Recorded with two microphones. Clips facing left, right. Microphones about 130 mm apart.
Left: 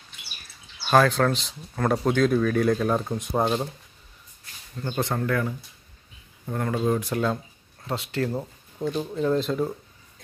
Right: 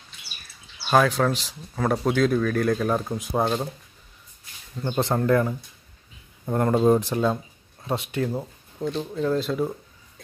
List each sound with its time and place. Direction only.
0.8 s speech: 5° right (ahead or behind)
4.9 s speech: 30° right (ahead or behind)
8.2 s speech: 5° right (ahead or behind)